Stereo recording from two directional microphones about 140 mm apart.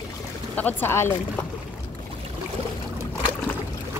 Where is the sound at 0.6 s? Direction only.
15° left (ahead or behind).